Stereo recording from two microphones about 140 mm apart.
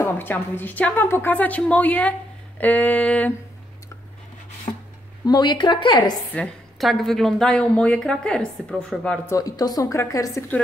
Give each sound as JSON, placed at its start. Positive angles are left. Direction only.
{"t": 0.0, "sound": "a woman's voice", "side_deg": 15}
{"t": 4.7, "sound": "a woman's voice", "side_deg": 35}
{"t": 6.3, "sound": "a woman's voice", "side_deg": 5}
{"t": 9.2, "sound": "a woman's voice", "side_deg": 25}